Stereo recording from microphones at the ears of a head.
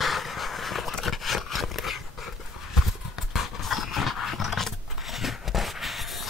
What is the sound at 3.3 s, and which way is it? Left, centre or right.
Dog, left.